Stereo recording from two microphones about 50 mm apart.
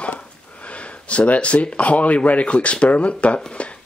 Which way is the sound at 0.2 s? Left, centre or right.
Left.